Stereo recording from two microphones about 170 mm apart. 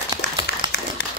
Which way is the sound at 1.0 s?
75° left (ahead or behind).